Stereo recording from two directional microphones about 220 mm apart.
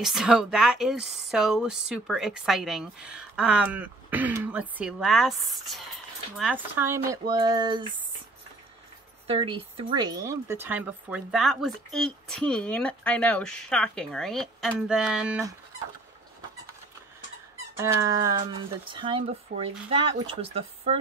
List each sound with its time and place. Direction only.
0.0 s speech: centre (ahead or behind); by 8.0 s 20° right (ahead or behind)
9.3 s speech: 25° right (ahead or behind); by 15.5 s 5° right (ahead or behind)
17.7 s speech: 15° right (ahead or behind)